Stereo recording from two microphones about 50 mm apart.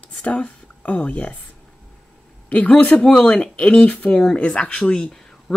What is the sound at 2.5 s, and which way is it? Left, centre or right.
Speech, left.